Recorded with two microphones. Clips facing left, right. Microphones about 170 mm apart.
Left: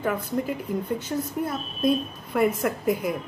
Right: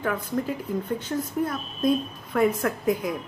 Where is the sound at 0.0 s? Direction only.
5° left (ahead or behind).